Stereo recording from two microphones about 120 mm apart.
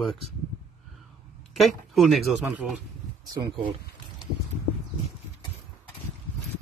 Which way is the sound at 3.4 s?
40° right (ahead or behind).